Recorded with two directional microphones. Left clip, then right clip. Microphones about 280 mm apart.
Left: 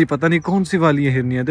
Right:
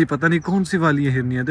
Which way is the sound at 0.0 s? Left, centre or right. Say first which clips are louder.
Left 2 dB; centre.